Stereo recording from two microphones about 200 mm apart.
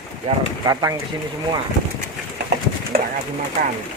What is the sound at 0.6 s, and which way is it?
Speech, 15° right (ahead or behind).